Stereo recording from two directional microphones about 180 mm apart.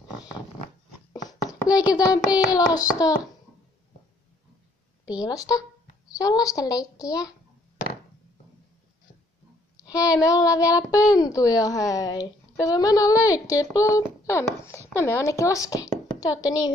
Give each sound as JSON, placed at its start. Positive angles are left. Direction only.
{"t": 1.1, "sound": "a sound", "side_deg": 20}
{"t": 2.0, "sound": "a woman's voice", "side_deg": 20}
{"t": 5.3, "sound": "a woman's voice", "side_deg": 20}
{"t": 10.2, "sound": "a woman's voice", "side_deg": 20}